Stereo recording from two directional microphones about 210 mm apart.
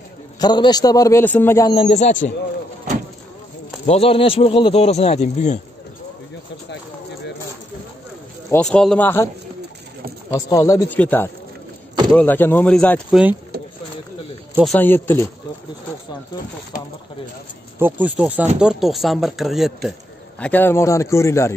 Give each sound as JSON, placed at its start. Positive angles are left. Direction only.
{"t": 0.4, "sound": "a man's voice", "side_deg": 20}
{"t": 1.7, "sound": "speech", "side_deg": 25}
{"t": 3.8, "sound": "speech", "side_deg": 30}
{"t": 8.5, "sound": "a man's voice", "side_deg": 5}
{"t": 10.3, "sound": "a man's voice", "side_deg": 15}
{"t": 14.6, "sound": "a man's voice", "side_deg": 5}
{"t": 16.7, "sound": "speech", "side_deg": 40}
{"t": 17.7, "sound": "a man's voice", "side_deg": -10}